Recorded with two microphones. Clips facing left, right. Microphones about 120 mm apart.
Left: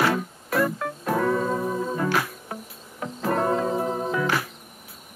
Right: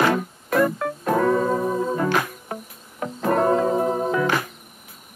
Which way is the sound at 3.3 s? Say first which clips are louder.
Right 4 dB; 5° right (ahead or behind).